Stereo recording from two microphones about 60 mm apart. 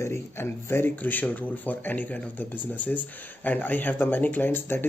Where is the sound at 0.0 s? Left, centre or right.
Left.